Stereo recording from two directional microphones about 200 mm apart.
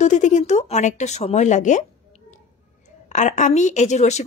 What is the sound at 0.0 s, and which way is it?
Speech, 35° left (ahead or behind).